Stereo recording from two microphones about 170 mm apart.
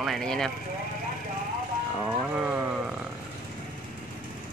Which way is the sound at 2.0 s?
5° right (ahead or behind).